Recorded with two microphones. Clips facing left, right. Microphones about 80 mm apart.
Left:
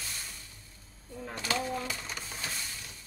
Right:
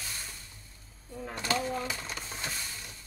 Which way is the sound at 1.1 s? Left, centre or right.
Centre.